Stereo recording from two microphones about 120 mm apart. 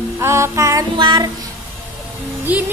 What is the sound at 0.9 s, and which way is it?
Child singing, 40° right (ahead or behind).